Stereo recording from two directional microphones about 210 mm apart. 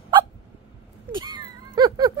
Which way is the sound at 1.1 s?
20° right (ahead or behind).